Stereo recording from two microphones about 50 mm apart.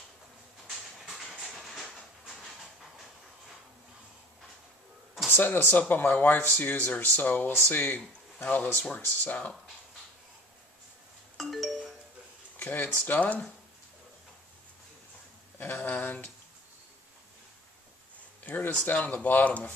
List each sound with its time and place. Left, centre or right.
0.7 s a sound: centre
5.3 s speech: left
11.3 s music: centre
12.5 s speech: left
13.1 s speech: left
15.6 s speech: left
18.4 s speech: left